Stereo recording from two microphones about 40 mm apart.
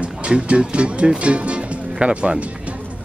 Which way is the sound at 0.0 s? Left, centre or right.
Right.